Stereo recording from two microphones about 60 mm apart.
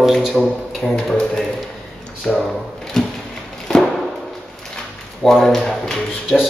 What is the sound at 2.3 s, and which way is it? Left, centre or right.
Speech, centre.